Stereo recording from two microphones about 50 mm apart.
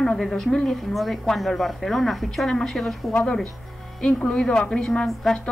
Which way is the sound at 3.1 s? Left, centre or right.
Left.